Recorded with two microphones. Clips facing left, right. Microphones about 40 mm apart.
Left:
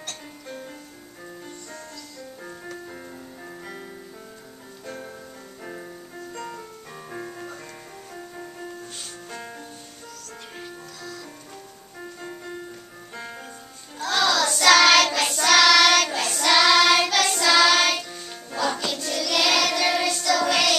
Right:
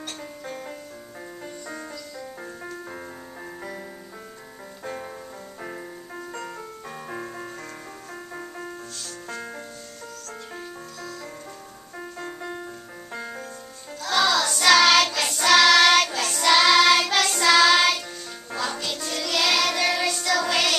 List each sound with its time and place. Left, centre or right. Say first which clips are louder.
4.8 s music: right 3 dB; right
11.0 s music: right 1 dB; right
12.0 s music: right 2 dB; centre
14.0 s child singing: even; centre
15.1 s singing: left 2 dB; centre
15.4 s singing: right 1 dB; centre
16.1 s child singing: right 1 dB; centre
17.2 s singing: right 1 dB; centre
18.9 s music: left 2 dB; centre
19.3 s child singing: left 1 dB; centre
19.8 s music: left 1 dB; centre
20.2 s child singing: left 2 dB; centre